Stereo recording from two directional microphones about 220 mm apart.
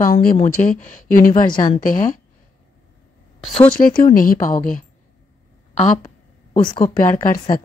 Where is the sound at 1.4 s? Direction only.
20° left (ahead or behind).